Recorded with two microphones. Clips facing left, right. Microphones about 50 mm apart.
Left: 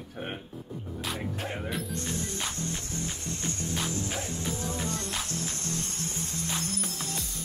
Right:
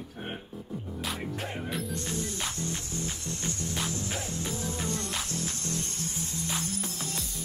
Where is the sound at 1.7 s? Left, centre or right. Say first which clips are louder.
Even; centre.